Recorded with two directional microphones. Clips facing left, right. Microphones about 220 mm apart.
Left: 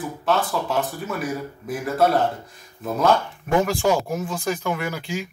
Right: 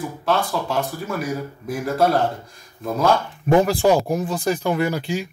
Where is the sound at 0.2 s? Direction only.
Centre (ahead or behind).